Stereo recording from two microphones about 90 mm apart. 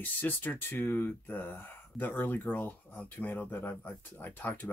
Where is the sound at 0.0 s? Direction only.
20° left (ahead or behind).